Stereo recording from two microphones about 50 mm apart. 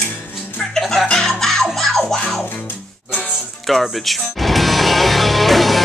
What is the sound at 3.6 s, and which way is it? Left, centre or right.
Speech, centre.